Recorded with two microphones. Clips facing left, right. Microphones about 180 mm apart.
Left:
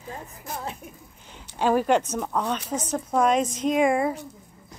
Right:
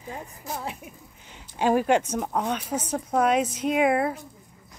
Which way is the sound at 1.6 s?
10° right (ahead or behind).